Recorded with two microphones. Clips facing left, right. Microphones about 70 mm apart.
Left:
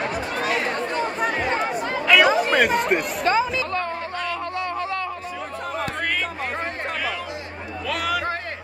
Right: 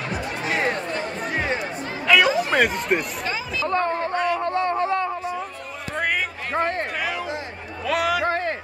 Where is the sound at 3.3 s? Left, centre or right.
Left.